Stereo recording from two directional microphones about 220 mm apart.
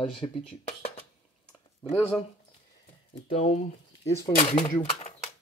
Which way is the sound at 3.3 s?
30° left (ahead or behind).